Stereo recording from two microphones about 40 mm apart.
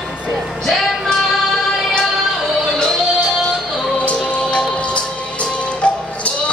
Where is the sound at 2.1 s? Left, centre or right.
Centre.